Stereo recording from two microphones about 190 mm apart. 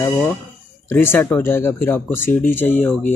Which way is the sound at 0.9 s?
10° left (ahead or behind).